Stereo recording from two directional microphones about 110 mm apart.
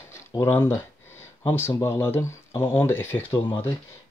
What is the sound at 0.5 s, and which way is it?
Speech, 20° left (ahead or behind).